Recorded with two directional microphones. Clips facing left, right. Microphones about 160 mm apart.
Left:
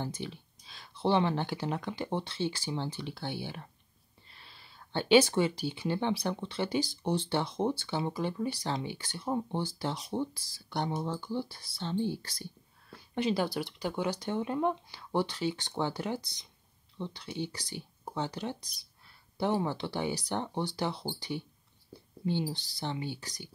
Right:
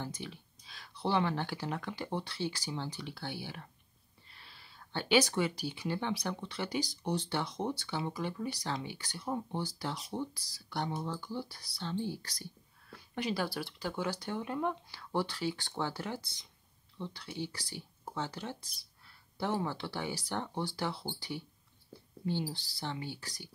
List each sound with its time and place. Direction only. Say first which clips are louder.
0.0 s speech: left 4 dB; 25° left (ahead or behind)